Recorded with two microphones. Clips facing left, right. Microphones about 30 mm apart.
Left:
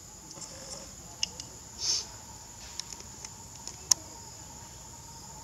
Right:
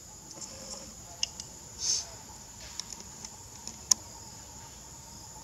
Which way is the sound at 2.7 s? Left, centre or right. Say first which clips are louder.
Even; centre.